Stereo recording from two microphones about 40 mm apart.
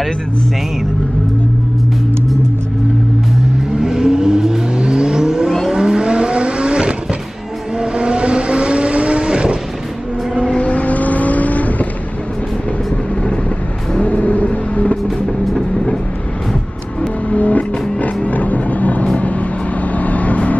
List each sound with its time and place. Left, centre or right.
3.7 s vehicle: centre
10.6 s vehicle: left
13.9 s vehicle: left
15.0 s music: centre
17.3 s music: left
20.0 s vehicle: left